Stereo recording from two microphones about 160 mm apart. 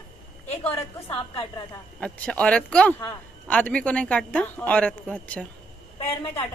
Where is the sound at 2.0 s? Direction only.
5° left (ahead or behind).